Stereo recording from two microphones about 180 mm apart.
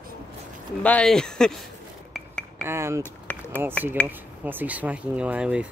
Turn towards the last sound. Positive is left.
turn(degrees=-5)  # may be behind; listen again after turning